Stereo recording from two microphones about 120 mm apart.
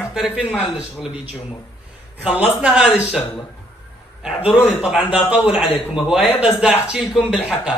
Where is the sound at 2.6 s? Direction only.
10° right (ahead or behind).